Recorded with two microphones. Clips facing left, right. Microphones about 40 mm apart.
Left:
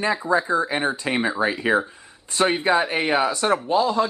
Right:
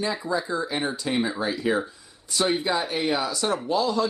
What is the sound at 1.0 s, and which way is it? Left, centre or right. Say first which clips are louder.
Speech: left 2 dB; left.